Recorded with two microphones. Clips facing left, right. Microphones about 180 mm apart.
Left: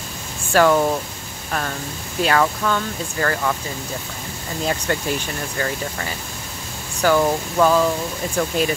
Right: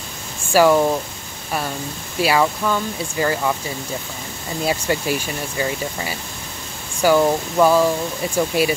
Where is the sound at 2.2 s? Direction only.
10° right (ahead or behind).